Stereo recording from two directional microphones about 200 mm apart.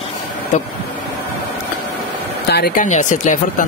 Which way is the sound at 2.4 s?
50° left (ahead or behind).